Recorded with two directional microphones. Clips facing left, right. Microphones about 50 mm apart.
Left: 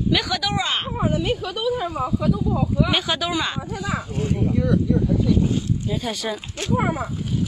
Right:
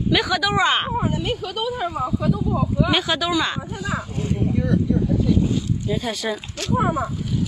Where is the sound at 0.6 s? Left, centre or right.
Right.